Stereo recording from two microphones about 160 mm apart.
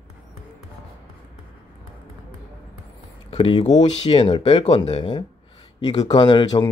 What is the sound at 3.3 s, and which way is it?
Speech, 35° left (ahead or behind).